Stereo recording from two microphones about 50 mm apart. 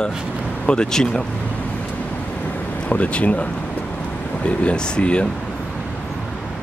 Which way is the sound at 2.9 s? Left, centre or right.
Left.